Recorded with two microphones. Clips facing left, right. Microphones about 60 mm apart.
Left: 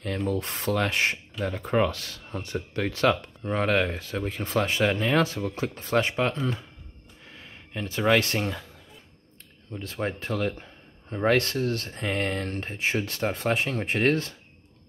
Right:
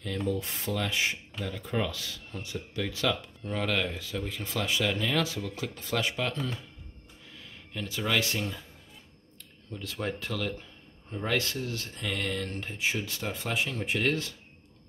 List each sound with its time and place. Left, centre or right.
0.0 s speech: left
9.4 s speech: left